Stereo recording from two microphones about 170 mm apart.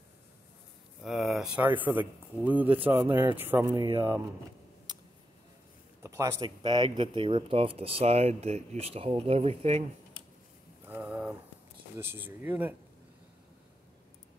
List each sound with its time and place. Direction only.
1.0 s speech: centre (ahead or behind)
6.0 s speech: 20° right (ahead or behind); by 9.8 s 40° right (ahead or behind)
10.9 s a sound: 10° right (ahead or behind)
12.0 s speech: 15° right (ahead or behind)